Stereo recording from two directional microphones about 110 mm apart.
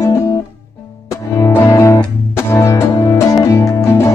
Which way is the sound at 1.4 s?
30° left (ahead or behind).